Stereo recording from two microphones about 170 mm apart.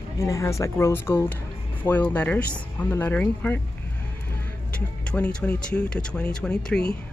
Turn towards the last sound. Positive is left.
turn(degrees=5)  # may be behind; listen again after turning